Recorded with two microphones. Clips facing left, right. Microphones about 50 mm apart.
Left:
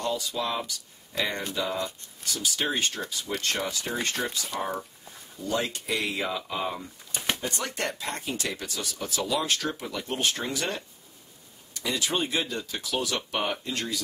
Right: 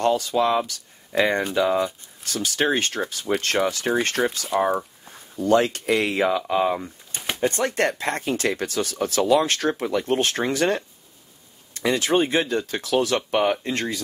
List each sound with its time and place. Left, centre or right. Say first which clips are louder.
0.0 s speech: right 9 dB; right
4.6 s speech: right 11 dB; right
5.0 s speech: right 10 dB; right
7.3 s speech: right 10 dB; right